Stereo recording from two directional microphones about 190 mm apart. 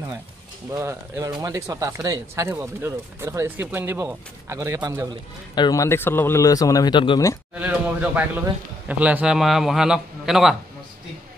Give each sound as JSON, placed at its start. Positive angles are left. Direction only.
{"t": 0.7, "sound": "speech", "side_deg": -15}
{"t": 5.5, "sound": "speech", "side_deg": 20}
{"t": 7.5, "sound": "a sound", "side_deg": -10}
{"t": 8.8, "sound": "a man's voice", "side_deg": -5}